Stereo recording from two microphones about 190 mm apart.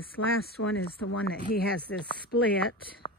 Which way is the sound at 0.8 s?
55° left (ahead or behind).